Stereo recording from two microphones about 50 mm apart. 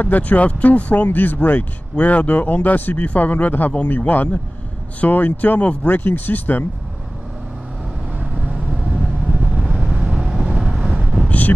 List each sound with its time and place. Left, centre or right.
0.0 s speech: left
1.0 s speech: left
8.2 s vehicle: right
11.2 s vehicle: left